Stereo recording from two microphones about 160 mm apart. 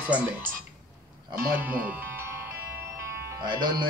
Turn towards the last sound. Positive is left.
turn(degrees=-30)  # may be behind; listen again after turning